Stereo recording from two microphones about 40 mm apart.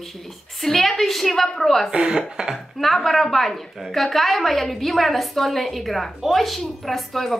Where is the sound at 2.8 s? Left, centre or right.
Centre.